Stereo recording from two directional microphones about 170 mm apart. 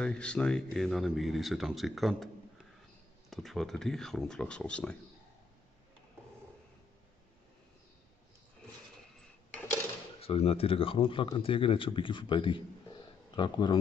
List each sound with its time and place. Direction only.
0.0 s speech: 5° left (ahead or behind)
3.3 s speech: centre (ahead or behind)
10.2 s speech: 35° left (ahead or behind)